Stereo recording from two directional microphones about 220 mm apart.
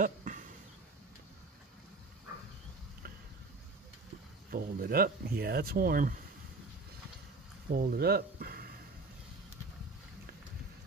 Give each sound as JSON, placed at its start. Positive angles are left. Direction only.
{"t": 0.0, "sound": "a sound", "side_deg": -35}
{"t": 4.5, "sound": "speech", "side_deg": -40}
{"t": 7.7, "sound": "speech", "side_deg": -45}